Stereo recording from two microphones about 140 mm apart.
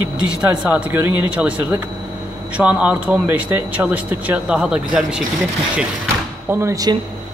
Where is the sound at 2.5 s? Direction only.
10° right (ahead or behind).